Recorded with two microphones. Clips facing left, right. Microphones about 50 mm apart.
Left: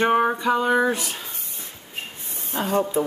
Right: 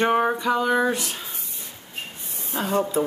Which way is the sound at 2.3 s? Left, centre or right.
Left.